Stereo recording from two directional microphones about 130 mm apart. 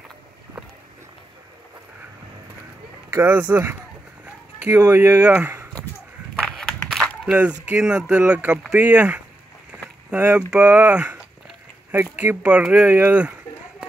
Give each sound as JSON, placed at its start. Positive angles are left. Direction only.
{"t": 3.1, "sound": "speech", "side_deg": -15}
{"t": 4.8, "sound": "speech", "side_deg": -15}
{"t": 6.3, "sound": "a sound", "side_deg": 0}
{"t": 7.3, "sound": "speech", "side_deg": -10}
{"t": 9.7, "sound": "rowboat", "side_deg": -10}
{"t": 10.5, "sound": "speech", "side_deg": -10}